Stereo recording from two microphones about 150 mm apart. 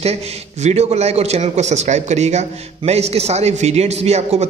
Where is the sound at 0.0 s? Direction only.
45° right (ahead or behind).